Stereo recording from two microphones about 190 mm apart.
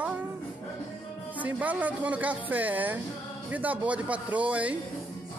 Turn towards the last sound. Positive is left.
turn(degrees=-5)  # may be behind; listen again after turning